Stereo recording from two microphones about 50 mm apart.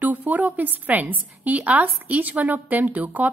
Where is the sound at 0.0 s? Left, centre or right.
Right.